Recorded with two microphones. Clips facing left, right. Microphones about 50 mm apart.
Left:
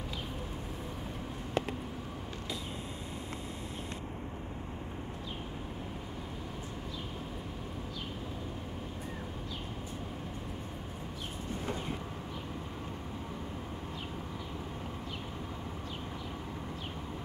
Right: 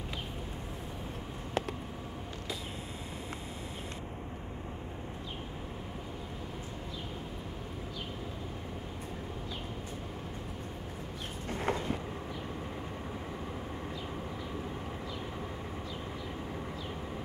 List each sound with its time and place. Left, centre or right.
11.4 s vehicle: right